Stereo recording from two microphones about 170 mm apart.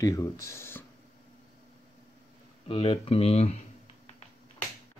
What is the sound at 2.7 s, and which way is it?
Speech, 35° left (ahead or behind).